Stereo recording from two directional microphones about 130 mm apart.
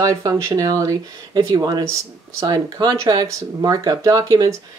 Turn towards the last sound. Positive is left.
turn(degrees=-25)  # may be behind; listen again after turning